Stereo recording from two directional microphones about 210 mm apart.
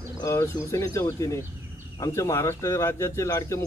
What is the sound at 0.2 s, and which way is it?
Speech, 15° left (ahead or behind).